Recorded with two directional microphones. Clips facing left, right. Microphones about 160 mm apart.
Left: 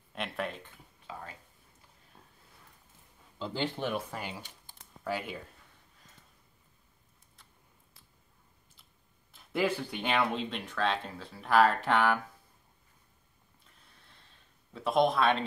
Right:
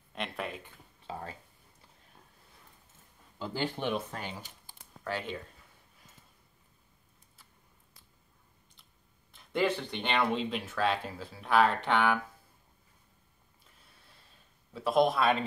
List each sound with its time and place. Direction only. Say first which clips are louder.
0.1 s a sound: left 1 dB; centre (ahead or behind)
1.0 s speech: right 4 dB; 35° right (ahead or behind)
3.3 s speech: even; 10° right (ahead or behind)
3.9 s speech: right 1 dB; 5° left (ahead or behind)
9.3 s speech: right 1 dB; 5° left (ahead or behind)
14.7 s speech: right 1 dB; centre (ahead or behind)